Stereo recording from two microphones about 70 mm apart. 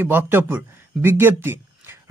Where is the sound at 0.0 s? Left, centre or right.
Right.